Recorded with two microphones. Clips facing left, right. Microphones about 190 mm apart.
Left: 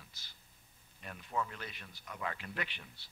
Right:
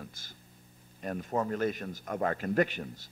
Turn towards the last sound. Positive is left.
turn(degrees=-45)  # may be behind; listen again after turning